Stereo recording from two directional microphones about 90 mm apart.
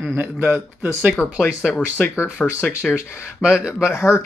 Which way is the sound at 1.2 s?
30° left (ahead or behind).